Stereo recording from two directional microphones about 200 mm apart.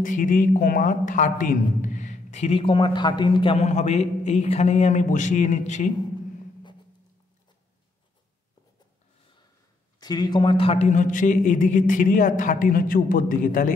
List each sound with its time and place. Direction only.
0.0 s a man's voice: 40° left (ahead or behind)
9.9 s a man's voice: 20° left (ahead or behind); by 13.7 s 40° left (ahead or behind)